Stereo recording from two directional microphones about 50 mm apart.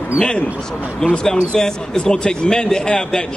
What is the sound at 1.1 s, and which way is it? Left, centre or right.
A man's voice, centre.